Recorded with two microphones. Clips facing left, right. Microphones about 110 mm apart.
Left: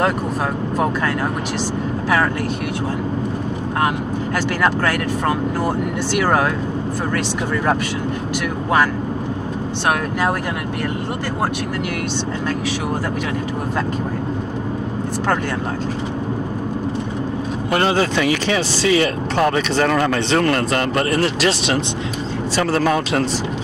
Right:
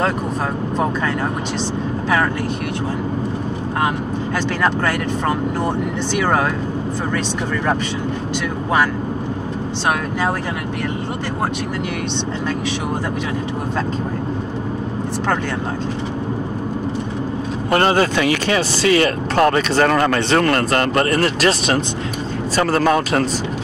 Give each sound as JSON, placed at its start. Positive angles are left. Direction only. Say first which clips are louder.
{"t": 6.1, "sound": "speech", "louder": "left 1 dB", "side_deg": 5}
{"t": 17.6, "sound": "speech", "louder": "right 2 dB", "side_deg": -45}